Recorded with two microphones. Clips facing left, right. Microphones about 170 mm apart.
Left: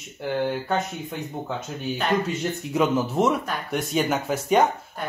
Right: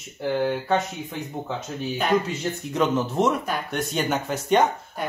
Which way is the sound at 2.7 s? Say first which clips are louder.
Left 1 dB; 5° left (ahead or behind).